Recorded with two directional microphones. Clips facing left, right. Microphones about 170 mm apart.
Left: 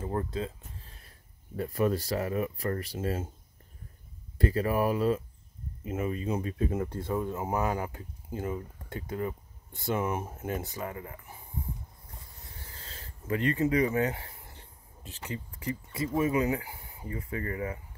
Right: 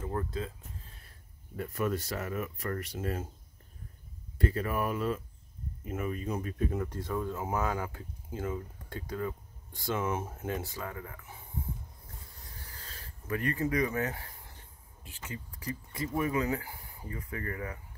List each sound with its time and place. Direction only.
0.0 s speech: 30° left (ahead or behind)
1.6 s speech: 35° left (ahead or behind)
4.4 s speech: 35° left (ahead or behind); by 11.3 s 15° left (ahead or behind)
12.6 s a sound: 25° left (ahead or behind)
15.0 s speech: 35° left (ahead or behind)
15.6 s speech: 25° left (ahead or behind)